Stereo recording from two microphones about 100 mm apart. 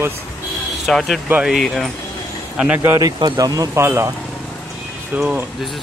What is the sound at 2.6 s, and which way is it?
Speech, 15° right (ahead or behind).